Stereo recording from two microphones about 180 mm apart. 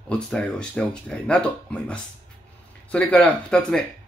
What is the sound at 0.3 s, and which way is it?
Speech, 5° left (ahead or behind).